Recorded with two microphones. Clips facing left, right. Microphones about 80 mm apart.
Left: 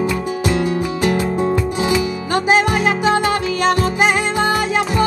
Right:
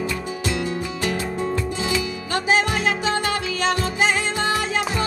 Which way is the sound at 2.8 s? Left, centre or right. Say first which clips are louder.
Left 6 dB; centre.